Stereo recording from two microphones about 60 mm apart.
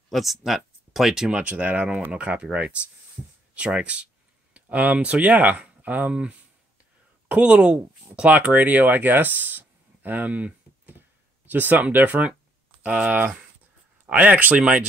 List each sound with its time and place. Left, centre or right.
0.1 s speech: centre
1.4 s speech: right
11.0 s a sound: right
12.8 s speech: right